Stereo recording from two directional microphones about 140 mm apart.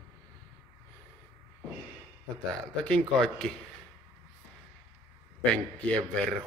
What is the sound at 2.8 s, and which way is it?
Speech, 5° left (ahead or behind).